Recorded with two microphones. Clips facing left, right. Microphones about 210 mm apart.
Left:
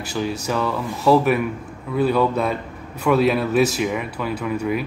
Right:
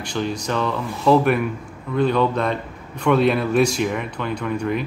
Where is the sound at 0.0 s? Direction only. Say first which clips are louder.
Even; 5° left (ahead or behind).